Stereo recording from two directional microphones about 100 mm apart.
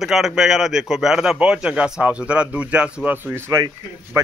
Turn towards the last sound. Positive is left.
turn(degrees=-35)  # may be behind; listen again after turning